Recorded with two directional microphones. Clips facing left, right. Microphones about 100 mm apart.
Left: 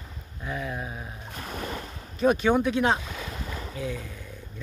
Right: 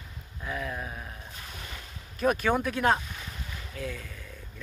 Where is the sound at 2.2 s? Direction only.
Centre (ahead or behind).